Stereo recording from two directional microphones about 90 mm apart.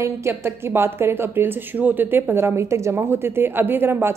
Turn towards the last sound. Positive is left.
turn(degrees=-25)  # may be behind; listen again after turning